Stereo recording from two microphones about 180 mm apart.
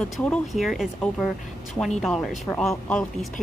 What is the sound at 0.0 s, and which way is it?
Speech, 5° left (ahead or behind).